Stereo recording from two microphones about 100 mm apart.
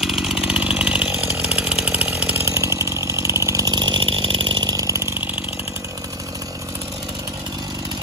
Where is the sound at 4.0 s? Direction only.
65° right (ahead or behind).